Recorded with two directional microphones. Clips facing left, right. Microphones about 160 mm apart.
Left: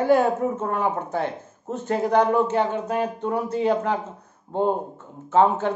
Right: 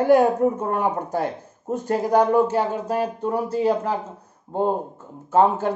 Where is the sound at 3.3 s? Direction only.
35° right (ahead or behind).